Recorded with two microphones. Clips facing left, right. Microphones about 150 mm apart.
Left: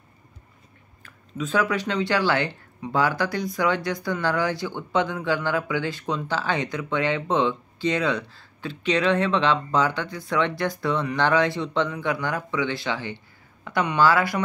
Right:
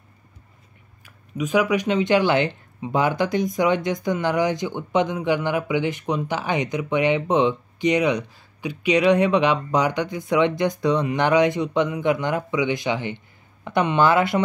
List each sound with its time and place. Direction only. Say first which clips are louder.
1.0 s speech: right 3 dB; 15° right (ahead or behind)